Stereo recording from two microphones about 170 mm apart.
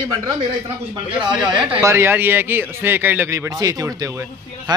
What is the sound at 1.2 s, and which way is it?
Speech, 25° right (ahead or behind).